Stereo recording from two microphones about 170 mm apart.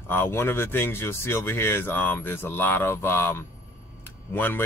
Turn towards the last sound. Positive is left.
turn(degrees=10)  # may be behind; listen again after turning